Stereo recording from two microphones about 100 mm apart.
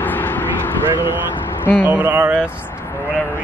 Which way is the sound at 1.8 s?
15° right (ahead or behind).